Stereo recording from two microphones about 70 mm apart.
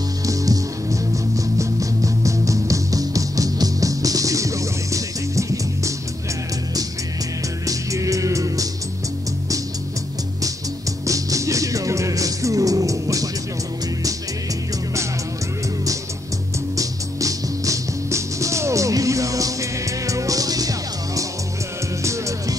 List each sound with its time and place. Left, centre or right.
0.3 s music: right
7.6 s music: right
11.1 s music: right
16.7 s music: right
22.0 s music: right